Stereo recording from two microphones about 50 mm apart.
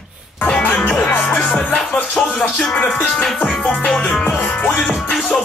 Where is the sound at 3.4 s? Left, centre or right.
Centre.